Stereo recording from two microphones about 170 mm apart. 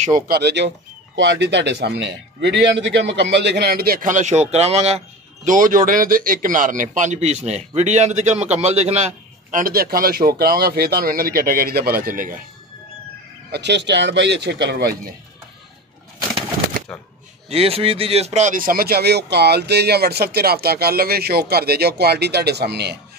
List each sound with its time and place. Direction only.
0.3 s a man's voice: 85° right; by 12.4 s 55° right (ahead or behind)
13.5 s speech: 90° right; by 15.1 s 70° right (ahead or behind)
17.5 s speech: 35° right (ahead or behind); by 22.9 s 75° right (ahead or behind)